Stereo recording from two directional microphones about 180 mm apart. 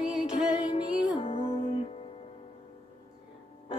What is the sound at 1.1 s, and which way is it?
Music, 30° left (ahead or behind).